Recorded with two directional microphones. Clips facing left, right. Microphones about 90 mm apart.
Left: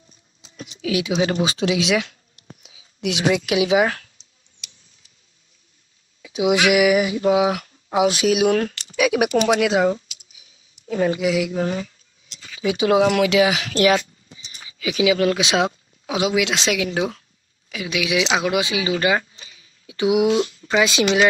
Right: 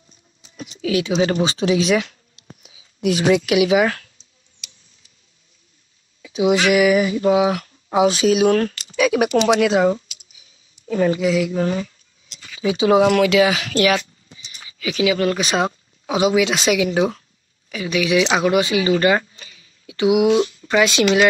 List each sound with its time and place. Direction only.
0.8 s speech: 10° left (ahead or behind)
2.6 s a sound: centre (ahead or behind)
3.4 s speech: 20° left (ahead or behind)
6.2 s speech: 5° left (ahead or behind)
13.2 s speech: 15° left (ahead or behind); by 17.2 s 5° right (ahead or behind)
17.6 s speech: 5° left (ahead or behind)
18.5 s speech: 15° left (ahead or behind)
18.9 s speech: 5° left (ahead or behind)
19.3 s a sound: 20° left (ahead or behind)
20.1 s speech: 20° right (ahead or behind)
20.6 s speech: 15° left (ahead or behind)